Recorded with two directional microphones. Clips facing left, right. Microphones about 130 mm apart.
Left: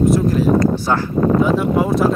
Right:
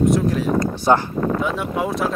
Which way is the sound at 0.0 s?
Centre (ahead or behind).